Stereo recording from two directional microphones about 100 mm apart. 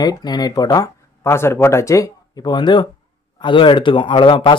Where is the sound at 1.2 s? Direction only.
25° left (ahead or behind).